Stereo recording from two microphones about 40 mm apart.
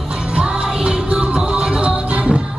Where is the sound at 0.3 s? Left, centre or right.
Right.